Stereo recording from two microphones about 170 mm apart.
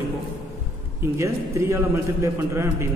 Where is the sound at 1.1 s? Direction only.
15° right (ahead or behind).